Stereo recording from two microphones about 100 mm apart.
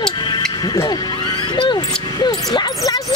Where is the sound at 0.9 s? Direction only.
45° left (ahead or behind).